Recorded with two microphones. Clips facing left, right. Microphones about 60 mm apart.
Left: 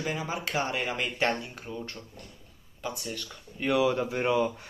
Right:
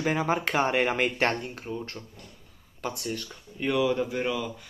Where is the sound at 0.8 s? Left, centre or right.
Right.